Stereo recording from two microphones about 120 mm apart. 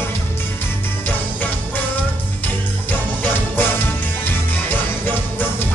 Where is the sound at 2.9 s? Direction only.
15° left (ahead or behind).